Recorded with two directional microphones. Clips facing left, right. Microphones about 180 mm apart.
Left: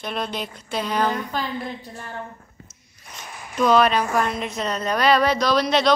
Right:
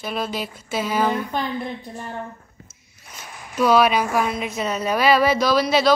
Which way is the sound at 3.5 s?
10° right (ahead or behind).